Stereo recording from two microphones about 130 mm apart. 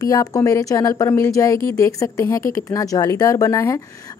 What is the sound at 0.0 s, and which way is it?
Speech, 25° left (ahead or behind).